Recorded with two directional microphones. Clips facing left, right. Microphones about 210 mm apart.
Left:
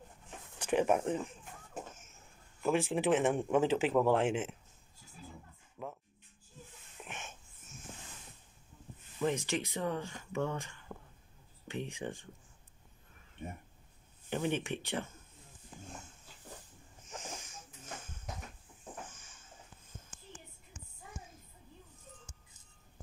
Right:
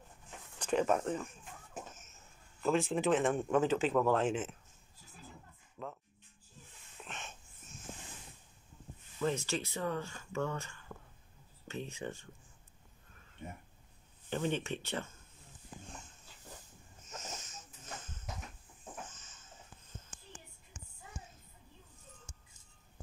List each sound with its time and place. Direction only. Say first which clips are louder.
0.6 s speech: left 1 dB; 10° left (ahead or behind)
2.6 s speech: even; 10° left (ahead or behind)
7.1 s a sound: left 1 dB; 10° left (ahead or behind)
9.2 s speech: left 1 dB; 15° left (ahead or behind)
14.3 s speech: left 1 dB; 15° left (ahead or behind)
17.1 s a sound: left 1 dB; 15° left (ahead or behind)